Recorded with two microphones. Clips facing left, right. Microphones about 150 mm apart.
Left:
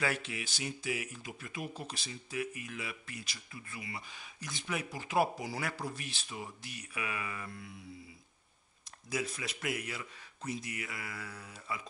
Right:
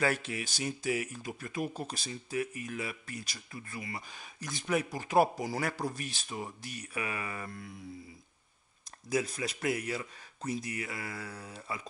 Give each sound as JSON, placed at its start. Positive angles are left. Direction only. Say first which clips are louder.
{"t": 0.0, "sound": "speech", "louder": "right 4 dB", "side_deg": -40}
{"t": 9.1, "sound": "speech", "louder": "right 5 dB", "side_deg": -40}